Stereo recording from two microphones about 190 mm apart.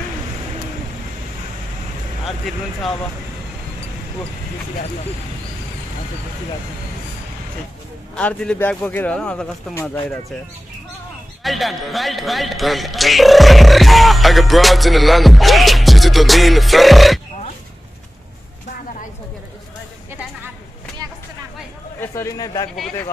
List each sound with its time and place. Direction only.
2.2 s speech: centre (ahead or behind)
8.2 s a man's voice: 5° left (ahead or behind)
11.4 s speech: centre (ahead or behind)
22.0 s a man's voice: 15° left (ahead or behind)